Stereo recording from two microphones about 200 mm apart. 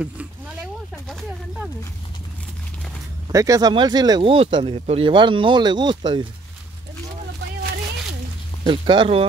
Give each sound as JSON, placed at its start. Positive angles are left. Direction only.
{"t": 3.3, "sound": "speech", "side_deg": -15}
{"t": 8.6, "sound": "speech", "side_deg": -25}